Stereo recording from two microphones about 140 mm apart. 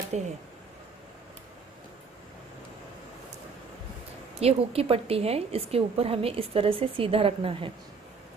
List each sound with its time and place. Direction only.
0.1 s speech: 55° right (ahead or behind)
4.4 s a woman's voice: 45° right (ahead or behind)